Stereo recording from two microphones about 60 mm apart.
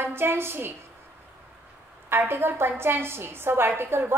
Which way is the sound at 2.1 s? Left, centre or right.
Right.